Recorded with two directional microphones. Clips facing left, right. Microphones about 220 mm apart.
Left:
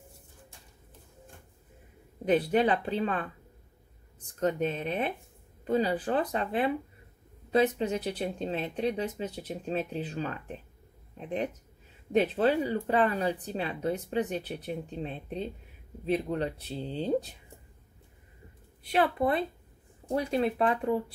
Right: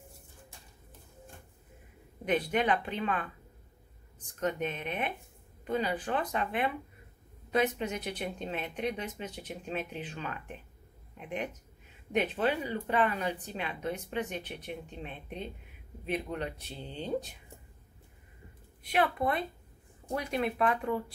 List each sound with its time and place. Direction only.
2.2 s speech: 35° left (ahead or behind)
4.4 s speech: 35° left (ahead or behind)
18.8 s speech: 30° left (ahead or behind)